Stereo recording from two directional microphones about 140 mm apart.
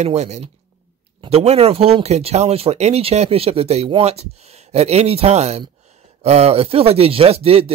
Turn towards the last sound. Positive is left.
turn(degrees=-45)  # may be behind; listen again after turning